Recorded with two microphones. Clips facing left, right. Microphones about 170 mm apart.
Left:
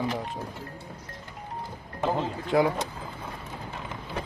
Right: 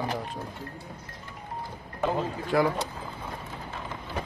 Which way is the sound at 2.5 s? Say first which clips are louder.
Left 1 dB; 15° left (ahead or behind).